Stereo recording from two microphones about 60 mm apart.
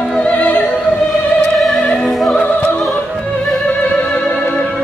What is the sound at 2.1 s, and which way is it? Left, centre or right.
Opera, centre.